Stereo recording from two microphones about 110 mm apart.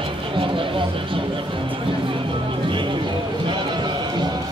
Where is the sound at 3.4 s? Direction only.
45° right (ahead or behind).